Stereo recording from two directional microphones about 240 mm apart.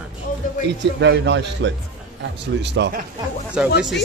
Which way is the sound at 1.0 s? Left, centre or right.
Right.